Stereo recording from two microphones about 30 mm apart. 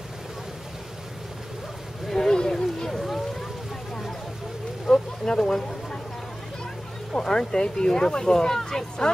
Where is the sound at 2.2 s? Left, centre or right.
Centre.